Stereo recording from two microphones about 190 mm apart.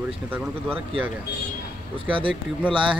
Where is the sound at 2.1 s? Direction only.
25° right (ahead or behind).